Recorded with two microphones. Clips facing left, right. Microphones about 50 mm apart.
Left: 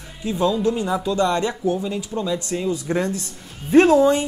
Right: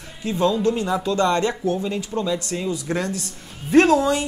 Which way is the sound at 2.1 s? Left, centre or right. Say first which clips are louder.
Right 1 dB; centre.